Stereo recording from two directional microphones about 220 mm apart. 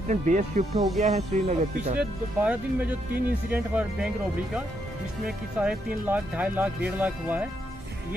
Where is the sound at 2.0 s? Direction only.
5° right (ahead or behind).